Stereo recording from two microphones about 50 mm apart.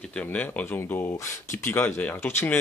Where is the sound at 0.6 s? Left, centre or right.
Left.